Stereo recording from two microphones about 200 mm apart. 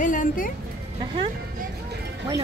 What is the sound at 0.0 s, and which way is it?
Music, 40° left (ahead or behind).